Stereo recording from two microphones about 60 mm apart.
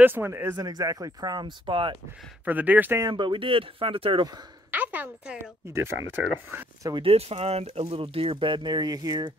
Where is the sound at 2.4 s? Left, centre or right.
Right.